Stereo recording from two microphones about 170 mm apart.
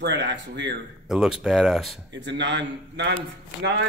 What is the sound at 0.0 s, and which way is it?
Speech, 90° right.